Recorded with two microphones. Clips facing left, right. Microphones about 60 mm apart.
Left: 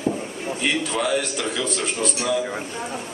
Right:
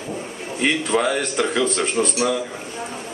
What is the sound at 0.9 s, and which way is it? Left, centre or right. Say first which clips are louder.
Speech: right 3 dB; right.